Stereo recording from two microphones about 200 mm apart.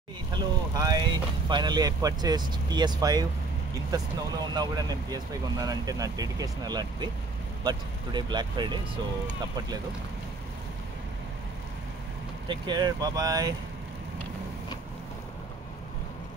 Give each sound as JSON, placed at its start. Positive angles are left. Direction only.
{"t": 0.3, "sound": "speech", "side_deg": -20}
{"t": 12.4, "sound": "speech", "side_deg": -20}